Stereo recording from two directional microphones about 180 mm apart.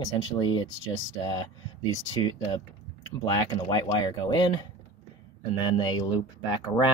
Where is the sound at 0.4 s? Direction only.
25° left (ahead or behind).